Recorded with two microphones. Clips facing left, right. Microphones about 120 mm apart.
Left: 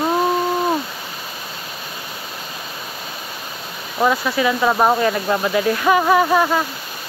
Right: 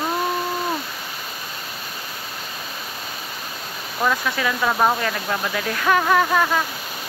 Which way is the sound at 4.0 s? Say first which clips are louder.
Left 5 dB; 15° left (ahead or behind).